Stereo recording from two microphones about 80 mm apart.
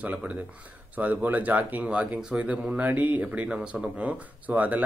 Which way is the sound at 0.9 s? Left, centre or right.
Centre.